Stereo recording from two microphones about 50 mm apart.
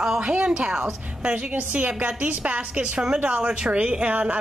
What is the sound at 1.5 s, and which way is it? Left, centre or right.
Speech, right.